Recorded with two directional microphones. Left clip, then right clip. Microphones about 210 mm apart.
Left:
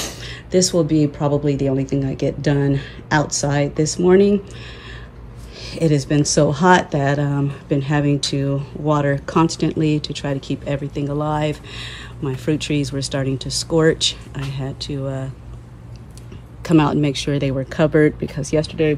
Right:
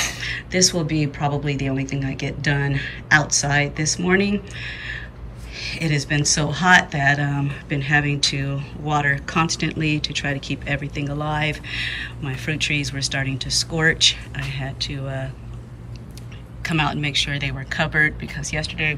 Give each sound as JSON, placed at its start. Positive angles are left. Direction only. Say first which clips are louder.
{"t": 0.0, "sound": "speech", "louder": "right 5 dB", "side_deg": 20}
{"t": 16.6, "sound": "speech", "louder": "left 6 dB", "side_deg": 25}